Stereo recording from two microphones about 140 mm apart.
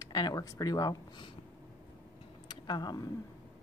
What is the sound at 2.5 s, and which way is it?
Speech, 30° left (ahead or behind).